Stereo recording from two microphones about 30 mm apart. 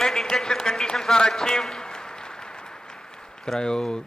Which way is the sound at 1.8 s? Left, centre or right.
Left.